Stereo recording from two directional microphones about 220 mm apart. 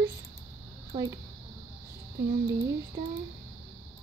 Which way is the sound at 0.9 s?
20° right (ahead or behind).